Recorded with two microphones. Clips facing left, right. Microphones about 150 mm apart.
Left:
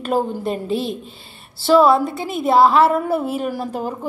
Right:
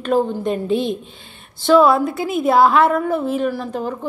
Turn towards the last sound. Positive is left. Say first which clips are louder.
# right 2 dB
turn(degrees=10)  # may be behind; listen again after turning